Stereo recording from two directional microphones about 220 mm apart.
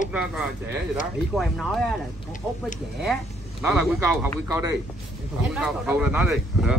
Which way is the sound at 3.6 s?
5° right (ahead or behind).